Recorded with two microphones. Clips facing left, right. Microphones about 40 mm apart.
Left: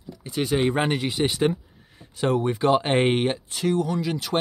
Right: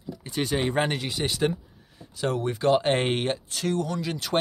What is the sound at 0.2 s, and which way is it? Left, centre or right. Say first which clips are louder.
Speech: left 4 dB; centre.